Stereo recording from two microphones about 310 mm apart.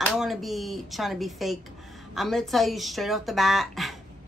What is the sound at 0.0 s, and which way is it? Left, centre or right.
A woman's voice, centre.